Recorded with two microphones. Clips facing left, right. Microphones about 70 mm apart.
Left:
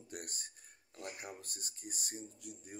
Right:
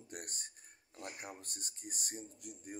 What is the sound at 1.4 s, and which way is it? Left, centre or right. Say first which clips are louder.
Speech: even; right.